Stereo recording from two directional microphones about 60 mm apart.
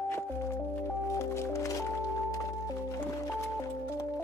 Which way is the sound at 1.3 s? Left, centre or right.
Left.